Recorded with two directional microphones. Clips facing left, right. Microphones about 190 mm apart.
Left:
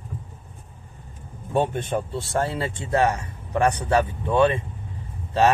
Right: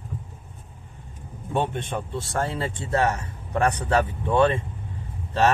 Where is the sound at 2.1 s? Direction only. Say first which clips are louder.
Left 2 dB; 30° left (ahead or behind).